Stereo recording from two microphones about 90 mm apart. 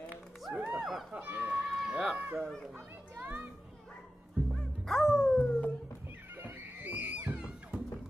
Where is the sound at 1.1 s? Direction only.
20° right (ahead or behind).